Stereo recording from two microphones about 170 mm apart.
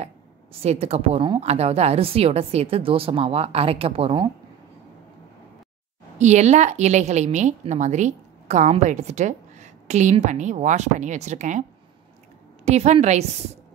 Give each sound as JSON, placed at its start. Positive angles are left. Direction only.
{"t": 0.0, "sound": "a woman's voice", "side_deg": -35}
{"t": 6.1, "sound": "a woman's voice", "side_deg": -45}
{"t": 12.6, "sound": "a woman's voice", "side_deg": -40}